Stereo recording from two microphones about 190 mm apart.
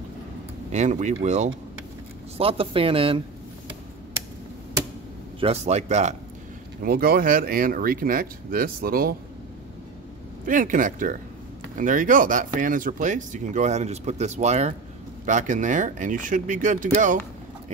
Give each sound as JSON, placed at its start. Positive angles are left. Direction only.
{"t": 0.7, "sound": "speech", "side_deg": -40}
{"t": 5.4, "sound": "speech", "side_deg": -35}
{"t": 6.8, "sound": "speech", "side_deg": -50}
{"t": 10.4, "sound": "speech", "side_deg": -45}